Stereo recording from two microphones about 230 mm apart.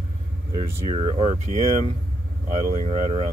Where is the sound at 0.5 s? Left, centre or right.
Right.